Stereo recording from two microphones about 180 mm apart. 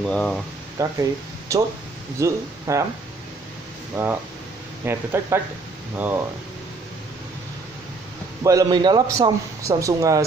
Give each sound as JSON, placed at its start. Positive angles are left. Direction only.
{"t": 0.0, "sound": "speech", "side_deg": 5}
{"t": 0.8, "sound": "a woman's voice", "side_deg": -15}
{"t": 3.9, "sound": "a woman's voice", "side_deg": -10}
{"t": 8.5, "sound": "a man's voice", "side_deg": -20}